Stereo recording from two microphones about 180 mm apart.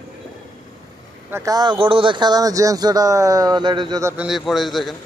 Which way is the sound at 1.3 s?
20° right (ahead or behind).